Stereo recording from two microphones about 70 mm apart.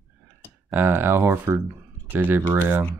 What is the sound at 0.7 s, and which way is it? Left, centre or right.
Speech, right.